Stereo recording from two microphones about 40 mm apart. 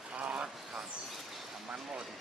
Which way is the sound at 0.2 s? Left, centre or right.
Right.